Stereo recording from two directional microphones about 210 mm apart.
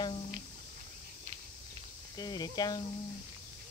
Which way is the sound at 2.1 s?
20° left (ahead or behind).